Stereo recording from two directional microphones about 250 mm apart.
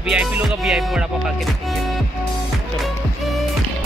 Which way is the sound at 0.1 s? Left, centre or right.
Centre.